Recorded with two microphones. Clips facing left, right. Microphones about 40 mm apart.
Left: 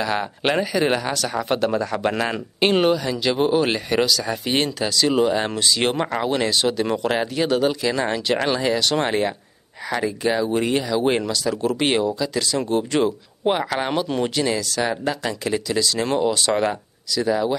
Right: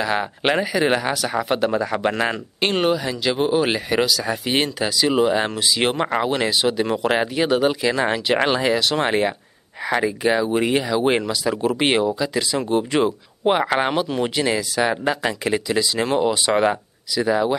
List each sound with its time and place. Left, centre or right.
0.0 s speech: centre
2.3 s speech: centre; by 8.7 s right
8.7 s speech: centre